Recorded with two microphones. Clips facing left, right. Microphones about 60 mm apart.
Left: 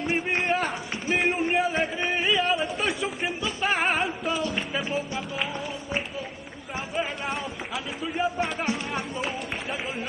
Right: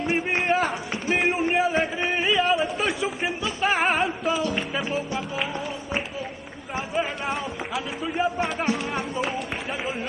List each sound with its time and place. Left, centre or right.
0.1 s a sound: centre
4.6 s music: centre
6.9 s speech: centre
8.9 s run: centre